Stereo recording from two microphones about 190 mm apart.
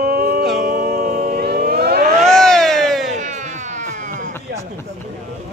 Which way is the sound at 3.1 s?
40° right (ahead or behind).